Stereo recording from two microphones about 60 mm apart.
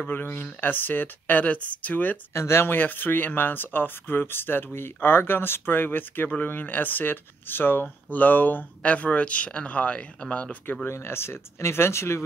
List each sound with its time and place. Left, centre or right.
0.1 s speech: left
2.3 s speech: left
2.8 s speech: left
10.9 s speech: left